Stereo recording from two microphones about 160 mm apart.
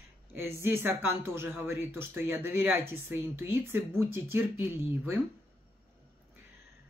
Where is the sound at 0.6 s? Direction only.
15° right (ahead or behind).